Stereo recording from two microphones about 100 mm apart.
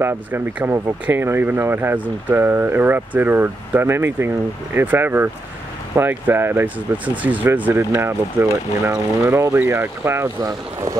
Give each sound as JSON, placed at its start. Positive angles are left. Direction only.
{"t": 0.0, "sound": "speech", "side_deg": -20}